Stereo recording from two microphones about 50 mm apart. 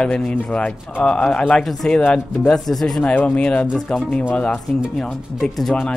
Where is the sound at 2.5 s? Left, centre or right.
Centre.